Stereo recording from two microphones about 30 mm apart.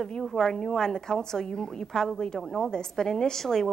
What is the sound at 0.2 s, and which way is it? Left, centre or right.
A woman's voice, centre.